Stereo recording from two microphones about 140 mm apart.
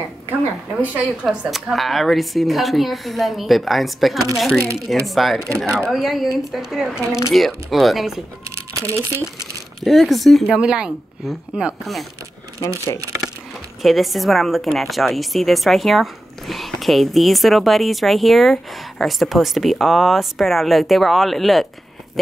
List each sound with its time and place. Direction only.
1.2 s a woman's voice: 5° right (ahead or behind)
8.5 s crumpling: 20° right (ahead or behind)
9.8 s a woman's voice: centre (ahead or behind)
12.6 s speech: 20° left (ahead or behind)
13.8 s a woman's voice: centre (ahead or behind)